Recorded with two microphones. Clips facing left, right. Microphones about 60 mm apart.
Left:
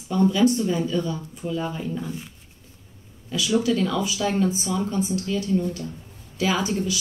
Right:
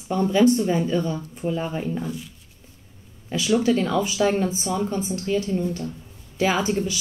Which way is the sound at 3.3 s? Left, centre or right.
Right.